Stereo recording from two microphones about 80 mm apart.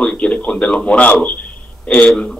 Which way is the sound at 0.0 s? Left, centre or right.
Centre.